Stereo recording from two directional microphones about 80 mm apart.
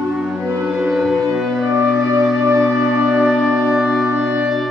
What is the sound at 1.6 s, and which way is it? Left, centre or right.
Music, right.